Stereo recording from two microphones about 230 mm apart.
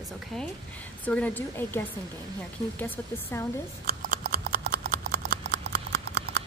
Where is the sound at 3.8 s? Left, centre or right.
Right.